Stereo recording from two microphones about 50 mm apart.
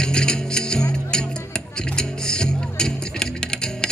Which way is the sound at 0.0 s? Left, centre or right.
Centre.